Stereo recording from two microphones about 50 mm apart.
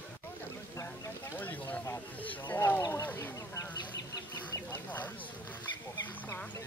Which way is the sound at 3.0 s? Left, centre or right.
Left.